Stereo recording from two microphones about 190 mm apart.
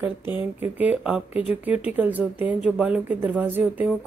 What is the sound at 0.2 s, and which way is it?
Speech, 25° left (ahead or behind).